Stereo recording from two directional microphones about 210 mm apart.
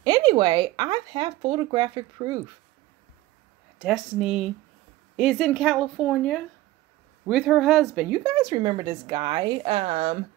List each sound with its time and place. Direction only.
0.0 s speech: 20° right (ahead or behind)
3.8 s a woman's voice: centre (ahead or behind); by 10.1 s 30° right (ahead or behind)